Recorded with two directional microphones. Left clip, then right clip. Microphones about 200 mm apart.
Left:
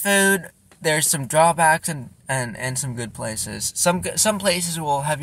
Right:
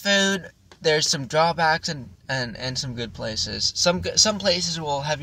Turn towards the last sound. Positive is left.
turn(degrees=20)  # may be behind; listen again after turning